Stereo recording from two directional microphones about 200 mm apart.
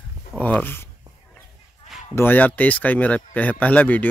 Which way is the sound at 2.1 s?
10° left (ahead or behind).